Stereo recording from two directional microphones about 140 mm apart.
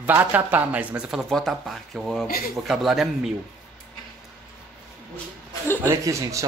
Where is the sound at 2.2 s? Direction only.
90° left.